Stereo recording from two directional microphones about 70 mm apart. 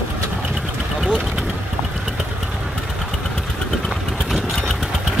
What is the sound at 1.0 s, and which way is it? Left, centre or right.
Speech, centre.